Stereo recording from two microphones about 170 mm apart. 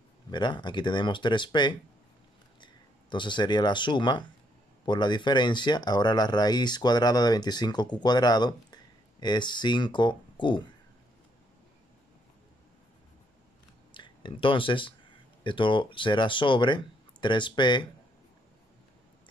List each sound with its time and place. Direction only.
0.3 s speech: 25° left (ahead or behind)
13.9 s speech: 30° left (ahead or behind)